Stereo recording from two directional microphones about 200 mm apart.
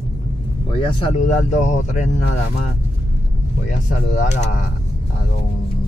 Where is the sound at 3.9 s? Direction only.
35° left (ahead or behind).